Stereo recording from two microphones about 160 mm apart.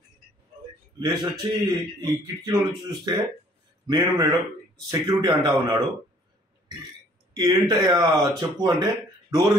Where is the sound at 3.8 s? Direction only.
25° right (ahead or behind).